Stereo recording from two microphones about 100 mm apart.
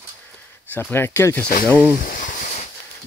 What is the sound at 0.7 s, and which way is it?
Speech, 20° left (ahead or behind).